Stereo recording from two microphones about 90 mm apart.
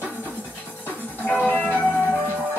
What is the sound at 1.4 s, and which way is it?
Music, 20° left (ahead or behind).